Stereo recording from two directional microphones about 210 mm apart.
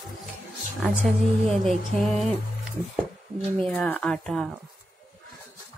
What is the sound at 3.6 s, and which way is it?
Speech, 5° left (ahead or behind).